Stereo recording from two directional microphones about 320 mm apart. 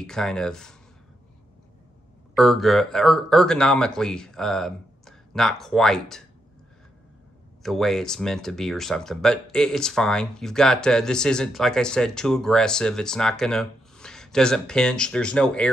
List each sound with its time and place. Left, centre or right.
0.0 s speech: centre
2.3 s speech: centre
7.6 s speech: centre